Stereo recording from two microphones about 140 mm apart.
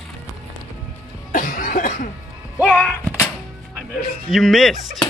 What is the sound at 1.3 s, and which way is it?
Cough, 75° left (ahead or behind).